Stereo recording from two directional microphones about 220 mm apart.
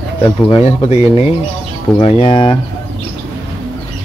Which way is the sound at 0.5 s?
30° left (ahead or behind).